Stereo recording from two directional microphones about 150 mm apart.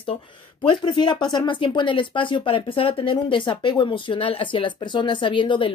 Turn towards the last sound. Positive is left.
turn(degrees=35)  # may be behind; listen again after turning